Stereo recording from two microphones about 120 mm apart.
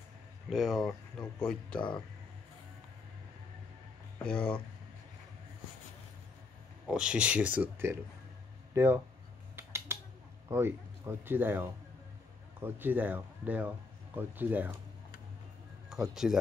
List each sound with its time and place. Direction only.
0.5 s speech: centre (ahead or behind)
4.2 s speech: 10° left (ahead or behind)
6.9 s speech: 10° right (ahead or behind)
9.6 s a sound: 20° right (ahead or behind)
10.5 s speech: 20° right (ahead or behind)
15.9 s speech: 5° right (ahead or behind)